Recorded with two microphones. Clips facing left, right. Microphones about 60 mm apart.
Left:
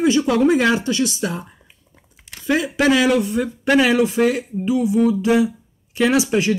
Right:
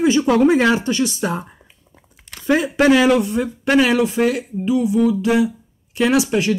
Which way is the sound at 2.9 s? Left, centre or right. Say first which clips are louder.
Right 2 dB; right.